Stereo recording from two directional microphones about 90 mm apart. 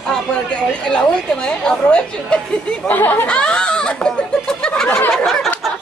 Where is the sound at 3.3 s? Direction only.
10° left (ahead or behind).